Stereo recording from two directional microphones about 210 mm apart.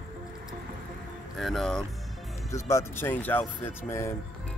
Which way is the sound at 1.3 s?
Centre (ahead or behind).